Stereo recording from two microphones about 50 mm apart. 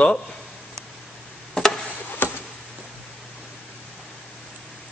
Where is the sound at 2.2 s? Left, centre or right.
Left.